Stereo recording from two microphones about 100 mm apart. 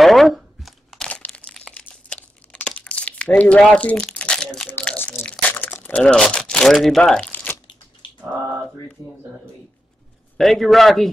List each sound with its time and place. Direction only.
0.0 s crumpling: centre (ahead or behind)
1.0 s crumpling: 10° left (ahead or behind)
4.9 s a sound: 20° left (ahead or behind)
5.5 s speech: 15° left (ahead or behind)
10.3 s a man's voice: centre (ahead or behind)